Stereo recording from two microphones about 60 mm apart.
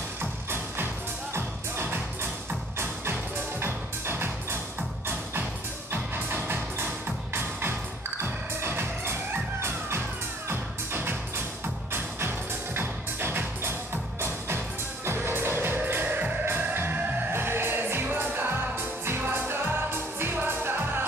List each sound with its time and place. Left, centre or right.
1.3 s music: right
5.9 s music: right
8.2 s music: right
12.7 s music: right
15.0 s music: right